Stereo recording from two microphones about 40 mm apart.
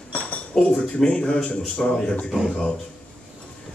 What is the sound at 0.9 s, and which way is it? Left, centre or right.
A man's voice, left.